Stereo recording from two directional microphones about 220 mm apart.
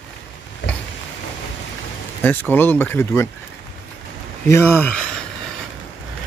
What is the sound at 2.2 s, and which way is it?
Speech, 10° left (ahead or behind).